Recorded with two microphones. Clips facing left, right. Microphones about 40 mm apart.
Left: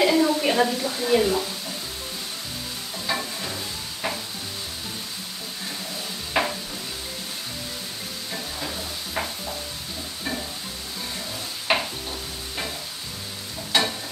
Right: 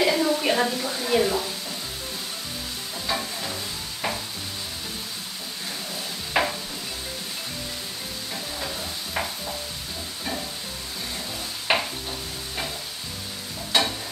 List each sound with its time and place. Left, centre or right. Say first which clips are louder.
0.0 s a sound: left 2 dB; centre
3.1 s stir: left 1 dB; centre
6.4 s stir: even; centre
8.5 s stir: even; centre
11.7 s stir: even; centre
13.7 s stir: even; centre